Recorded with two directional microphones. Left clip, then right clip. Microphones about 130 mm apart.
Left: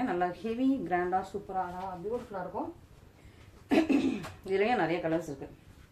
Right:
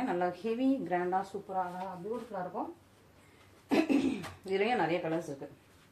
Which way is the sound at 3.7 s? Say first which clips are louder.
Left 2 dB; 30° left (ahead or behind).